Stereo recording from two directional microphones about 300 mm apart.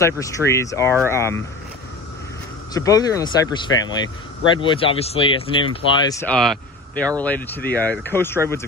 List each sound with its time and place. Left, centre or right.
0.0 s speech: centre
2.7 s speech: centre